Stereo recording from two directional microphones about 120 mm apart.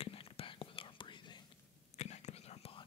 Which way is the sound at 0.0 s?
50° left (ahead or behind).